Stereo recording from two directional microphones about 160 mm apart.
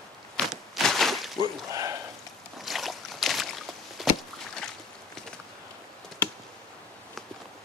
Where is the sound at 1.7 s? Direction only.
20° right (ahead or behind).